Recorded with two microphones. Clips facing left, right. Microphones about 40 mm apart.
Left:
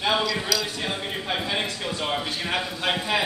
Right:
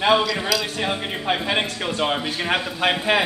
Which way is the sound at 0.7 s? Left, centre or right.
Right.